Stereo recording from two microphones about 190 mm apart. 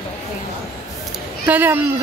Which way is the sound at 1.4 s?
10° right (ahead or behind).